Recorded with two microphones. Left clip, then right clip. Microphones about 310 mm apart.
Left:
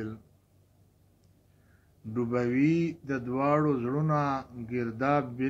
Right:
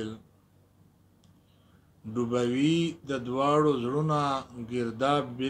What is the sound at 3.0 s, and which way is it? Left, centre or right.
A man's voice, centre.